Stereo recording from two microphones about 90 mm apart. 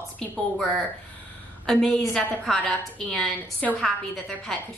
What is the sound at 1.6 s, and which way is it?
A woman's voice, 5° left (ahead or behind).